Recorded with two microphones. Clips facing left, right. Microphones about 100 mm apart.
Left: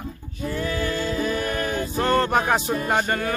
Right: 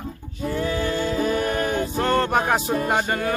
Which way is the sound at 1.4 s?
25° right (ahead or behind).